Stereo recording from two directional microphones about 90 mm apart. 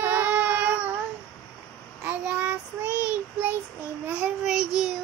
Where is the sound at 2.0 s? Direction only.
20° right (ahead or behind).